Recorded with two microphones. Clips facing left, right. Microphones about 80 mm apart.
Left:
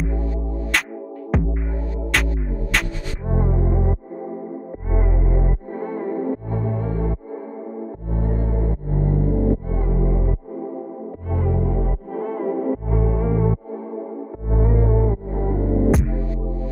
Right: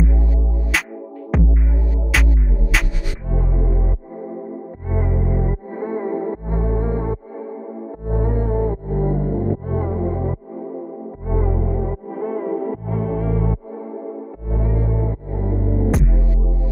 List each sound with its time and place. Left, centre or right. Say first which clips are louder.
1.3 s music: right 2 dB; centre
3.3 s music: left 3 dB; left
4.9 s music: right 2 dB; centre
5.9 s music: right 1 dB; centre
8.1 s music: right 5 dB; right
11.2 s music: right 1 dB; centre
14.5 s music: left 3 dB; left
15.9 s music: even; centre